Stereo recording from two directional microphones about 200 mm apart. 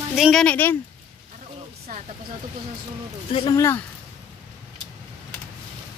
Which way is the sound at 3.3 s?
25° left (ahead or behind).